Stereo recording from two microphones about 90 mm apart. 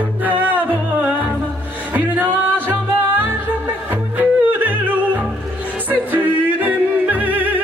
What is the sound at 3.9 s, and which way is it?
Yodeling, 20° right (ahead or behind).